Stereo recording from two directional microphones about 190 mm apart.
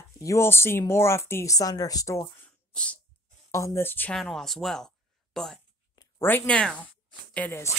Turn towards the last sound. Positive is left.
turn(degrees=10)  # may be behind; listen again after turning